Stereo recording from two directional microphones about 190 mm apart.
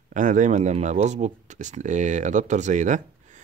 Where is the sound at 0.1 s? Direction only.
40° right (ahead or behind).